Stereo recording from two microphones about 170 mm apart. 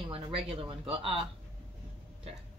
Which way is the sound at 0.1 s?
35° right (ahead or behind).